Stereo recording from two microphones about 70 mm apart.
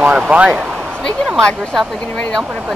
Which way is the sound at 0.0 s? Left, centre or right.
Centre.